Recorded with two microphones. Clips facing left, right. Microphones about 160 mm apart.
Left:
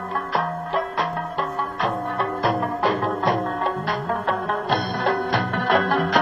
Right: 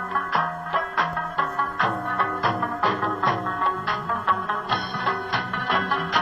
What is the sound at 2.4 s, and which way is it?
Music, 30° left (ahead or behind).